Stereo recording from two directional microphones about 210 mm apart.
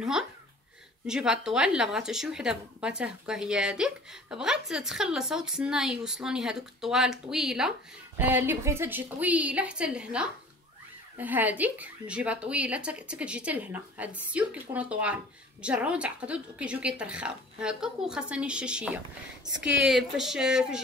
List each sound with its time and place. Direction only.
1.0 s a woman's voice: 5° right (ahead or behind)